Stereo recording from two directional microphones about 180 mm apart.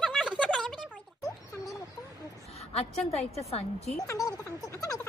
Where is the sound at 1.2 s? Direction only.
20° left (ahead or behind).